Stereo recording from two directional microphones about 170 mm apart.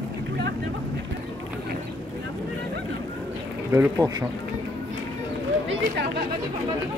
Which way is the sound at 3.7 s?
15° right (ahead or behind).